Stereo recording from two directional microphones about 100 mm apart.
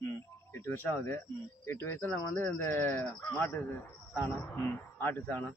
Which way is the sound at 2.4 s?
20° left (ahead or behind).